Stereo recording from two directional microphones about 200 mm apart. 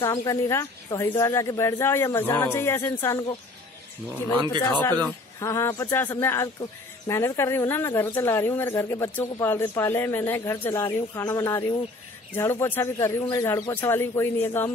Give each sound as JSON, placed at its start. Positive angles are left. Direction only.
{"t": 0.0, "sound": "speech", "side_deg": 15}
{"t": 5.0, "sound": "speech", "side_deg": 15}